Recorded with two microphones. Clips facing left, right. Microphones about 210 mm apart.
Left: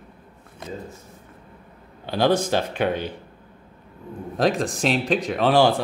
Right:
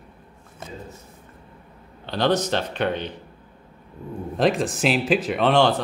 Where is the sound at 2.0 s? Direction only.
10° left (ahead or behind).